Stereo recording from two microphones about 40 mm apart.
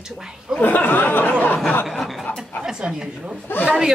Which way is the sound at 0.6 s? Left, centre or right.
Left.